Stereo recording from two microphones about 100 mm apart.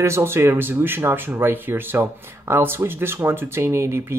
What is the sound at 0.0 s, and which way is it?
Speech, 25° right (ahead or behind).